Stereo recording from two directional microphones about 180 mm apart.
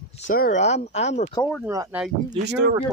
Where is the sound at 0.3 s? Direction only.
50° left (ahead or behind).